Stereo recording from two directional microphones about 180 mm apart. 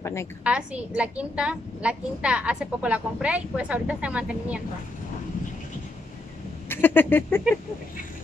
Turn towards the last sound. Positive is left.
turn(degrees=10)  # may be behind; listen again after turning